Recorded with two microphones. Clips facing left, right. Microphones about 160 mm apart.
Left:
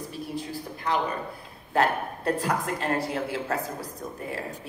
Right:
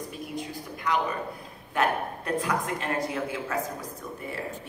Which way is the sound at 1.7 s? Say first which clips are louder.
Left 2 dB; 35° left (ahead or behind).